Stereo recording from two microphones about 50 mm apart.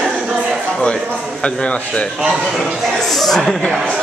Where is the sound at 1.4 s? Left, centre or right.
Left.